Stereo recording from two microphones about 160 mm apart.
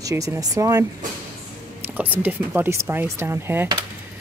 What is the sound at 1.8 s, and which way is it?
Speech, 10° right (ahead or behind).